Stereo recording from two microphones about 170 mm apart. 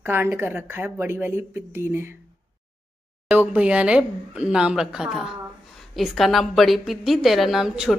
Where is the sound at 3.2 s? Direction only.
5° right (ahead or behind).